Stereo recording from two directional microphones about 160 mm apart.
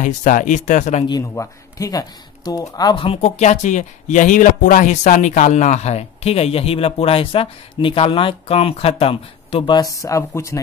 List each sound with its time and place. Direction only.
0.0 s speech: 55° left (ahead or behind)
1.2 s speech: 15° left (ahead or behind)
3.2 s speech: 45° left (ahead or behind)
9.8 s speech: 20° left (ahead or behind)